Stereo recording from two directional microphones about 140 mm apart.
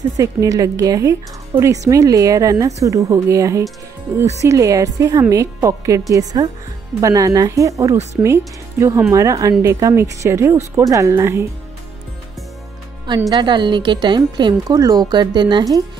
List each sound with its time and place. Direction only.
0.2 s speech: 25° right (ahead or behind)
4.1 s speech: 45° right (ahead or behind)
4.4 s speech: 20° right (ahead or behind)
13.3 s speech: 30° right (ahead or behind)